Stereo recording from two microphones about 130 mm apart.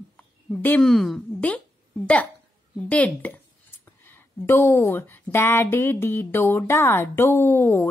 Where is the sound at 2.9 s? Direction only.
10° left (ahead or behind).